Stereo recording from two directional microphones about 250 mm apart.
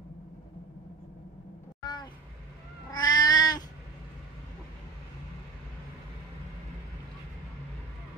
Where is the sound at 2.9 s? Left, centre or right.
Centre.